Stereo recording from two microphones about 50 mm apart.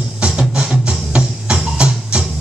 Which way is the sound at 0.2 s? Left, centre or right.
Centre.